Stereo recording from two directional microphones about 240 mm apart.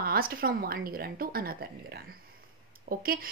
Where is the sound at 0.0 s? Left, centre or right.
Right.